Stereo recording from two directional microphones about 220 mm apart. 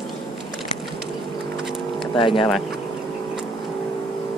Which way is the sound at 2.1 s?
25° left (ahead or behind).